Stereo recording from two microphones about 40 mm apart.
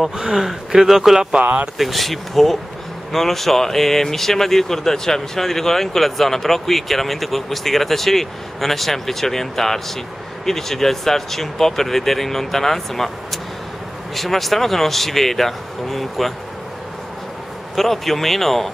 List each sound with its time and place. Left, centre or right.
0.2 s speech: centre
1.4 s speech: right
1.8 s speech: centre
17.7 s speech: centre